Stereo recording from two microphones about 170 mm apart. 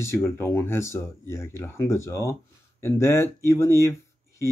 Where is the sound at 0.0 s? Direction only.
15° left (ahead or behind).